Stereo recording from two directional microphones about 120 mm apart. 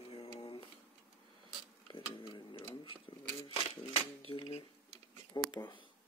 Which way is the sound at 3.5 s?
50° left (ahead or behind).